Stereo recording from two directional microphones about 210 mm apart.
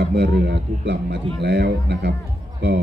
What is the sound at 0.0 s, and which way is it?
Speech, 55° right (ahead or behind).